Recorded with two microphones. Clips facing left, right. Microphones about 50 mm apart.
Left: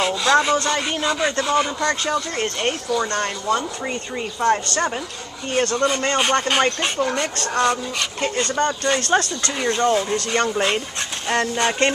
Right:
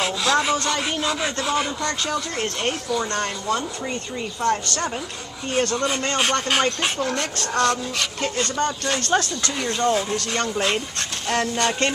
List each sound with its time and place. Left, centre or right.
0.0 s speech: centre
3.8 s speech: left
5.5 s speech: centre